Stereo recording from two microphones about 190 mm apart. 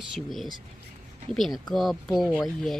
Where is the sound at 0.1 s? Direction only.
Centre (ahead or behind).